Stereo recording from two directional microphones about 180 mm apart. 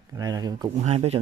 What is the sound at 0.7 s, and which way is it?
Speech, 40° right (ahead or behind).